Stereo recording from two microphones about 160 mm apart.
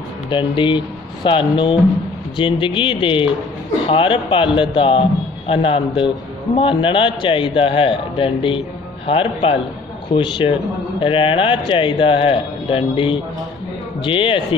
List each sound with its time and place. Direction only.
0.3 s a man's voice: 30° left (ahead or behind)